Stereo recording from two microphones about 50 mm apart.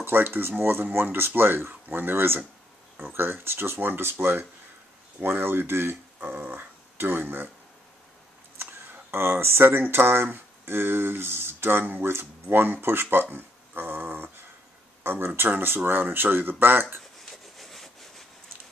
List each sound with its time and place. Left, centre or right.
0.0 s speech: right
9.1 s speech: right
17.0 s rub: centre